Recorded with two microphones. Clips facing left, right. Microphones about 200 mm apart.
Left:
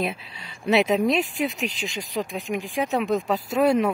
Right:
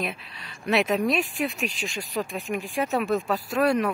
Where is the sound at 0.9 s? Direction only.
20° left (ahead or behind).